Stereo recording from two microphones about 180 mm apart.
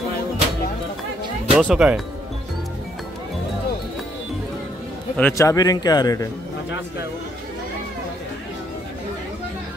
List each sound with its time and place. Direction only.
1.5 s speech: 5° right (ahead or behind)
5.1 s speech: 15° left (ahead or behind)